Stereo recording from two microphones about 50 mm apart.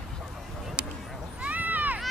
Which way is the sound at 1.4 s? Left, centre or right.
Right.